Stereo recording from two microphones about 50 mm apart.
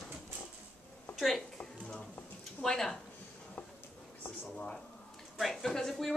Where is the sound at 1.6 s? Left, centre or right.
Left.